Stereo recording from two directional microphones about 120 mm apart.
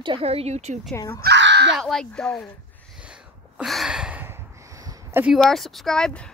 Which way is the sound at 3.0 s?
10° right (ahead or behind).